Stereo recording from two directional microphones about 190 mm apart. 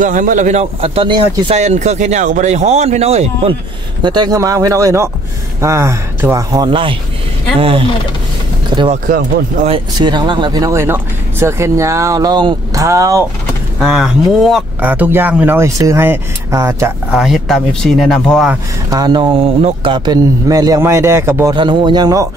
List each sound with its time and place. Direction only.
0.0 s speech: 40° right (ahead or behind); by 1.6 s 25° right (ahead or behind)
1.6 s speech: 35° right (ahead or behind)
4.0 s speech: 20° right (ahead or behind)
8.6 s music: 25° right (ahead or behind)
9.7 s speech: 25° right (ahead or behind)
13.8 s speech: centre (ahead or behind)
17.1 s speech: centre (ahead or behind)
18.9 s speech: 20° right (ahead or behind)
21.5 s speech: 25° right (ahead or behind)